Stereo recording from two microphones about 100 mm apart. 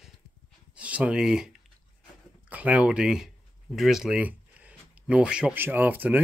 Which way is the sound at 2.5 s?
15° right (ahead or behind).